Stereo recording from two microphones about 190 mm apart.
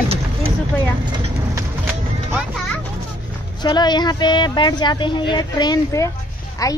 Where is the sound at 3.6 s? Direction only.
20° left (ahead or behind).